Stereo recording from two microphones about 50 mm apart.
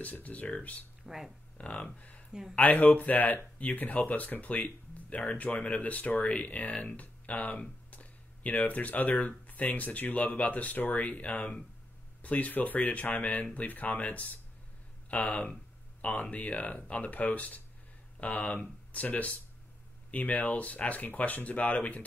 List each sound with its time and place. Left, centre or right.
0.0 s speech: left
1.0 s speech: centre
1.6 s speech: left
7.9 s a sound: left
9.5 s speech: left